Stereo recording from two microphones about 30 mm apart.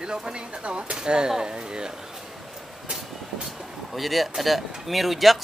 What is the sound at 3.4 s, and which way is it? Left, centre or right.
Speech, centre.